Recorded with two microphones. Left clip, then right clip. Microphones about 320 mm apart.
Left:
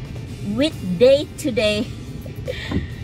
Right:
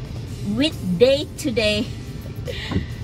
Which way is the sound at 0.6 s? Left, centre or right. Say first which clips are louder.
Left 2 dB; centre.